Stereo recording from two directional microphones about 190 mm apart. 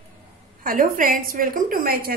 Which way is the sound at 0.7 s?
45° right (ahead or behind).